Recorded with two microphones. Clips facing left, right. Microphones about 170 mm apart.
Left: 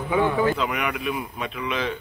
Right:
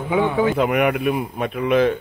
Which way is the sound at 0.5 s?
55° right (ahead or behind).